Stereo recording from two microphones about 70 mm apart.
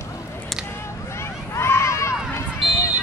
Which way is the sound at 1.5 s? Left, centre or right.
Left.